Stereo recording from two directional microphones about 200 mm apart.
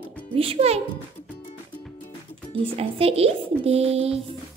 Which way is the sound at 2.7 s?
30° right (ahead or behind).